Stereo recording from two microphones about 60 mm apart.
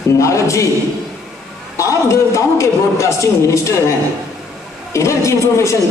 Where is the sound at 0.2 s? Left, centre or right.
Left.